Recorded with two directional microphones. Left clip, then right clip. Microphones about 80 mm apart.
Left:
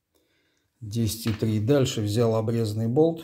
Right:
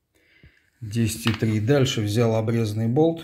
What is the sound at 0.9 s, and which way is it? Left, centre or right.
Speech, left.